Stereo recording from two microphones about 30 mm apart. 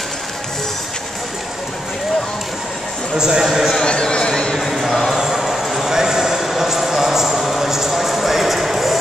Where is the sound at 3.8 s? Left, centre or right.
Left.